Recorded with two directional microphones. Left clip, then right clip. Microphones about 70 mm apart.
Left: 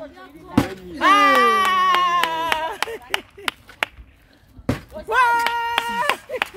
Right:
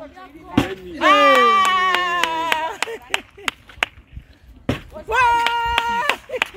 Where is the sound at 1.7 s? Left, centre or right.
Left.